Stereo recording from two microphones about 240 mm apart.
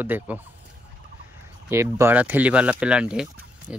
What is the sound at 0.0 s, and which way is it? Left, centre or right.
Speech, centre.